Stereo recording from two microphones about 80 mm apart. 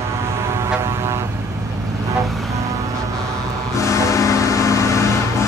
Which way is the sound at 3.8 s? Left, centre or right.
Left.